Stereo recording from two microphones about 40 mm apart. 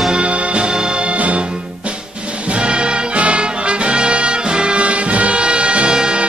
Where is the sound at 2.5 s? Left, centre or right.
Right.